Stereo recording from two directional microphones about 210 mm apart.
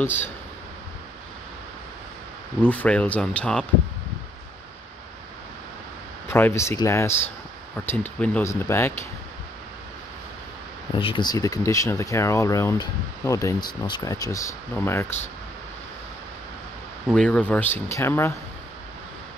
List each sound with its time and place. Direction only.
0.0 s speech: 10° left (ahead or behind)
2.6 s speech: 5° left (ahead or behind)
6.3 s speech: 10° left (ahead or behind)
11.0 s speech: 25° left (ahead or behind)
17.1 s speech: 5° left (ahead or behind)